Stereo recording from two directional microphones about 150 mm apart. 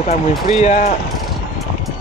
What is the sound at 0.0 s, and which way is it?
Speech, 50° left (ahead or behind).